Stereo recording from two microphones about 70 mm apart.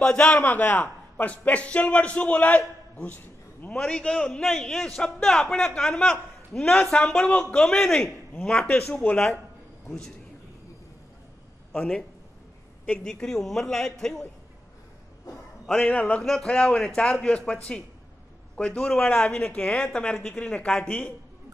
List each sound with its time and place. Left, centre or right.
0.0 s a man's voice: centre
0.4 s a man's voice: left; by 6.7 s centre
6.7 s a man's voice: centre
8.7 s a man's voice: left
11.7 s a man's voice: centre
13.0 s a man's voice: centre
15.8 s a man's voice: left
16.2 s a man's voice: centre